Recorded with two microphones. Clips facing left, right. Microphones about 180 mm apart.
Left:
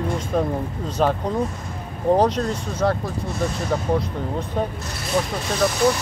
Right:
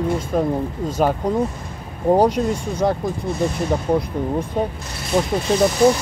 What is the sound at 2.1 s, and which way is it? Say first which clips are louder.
Speech: right 5 dB; 10° right (ahead or behind).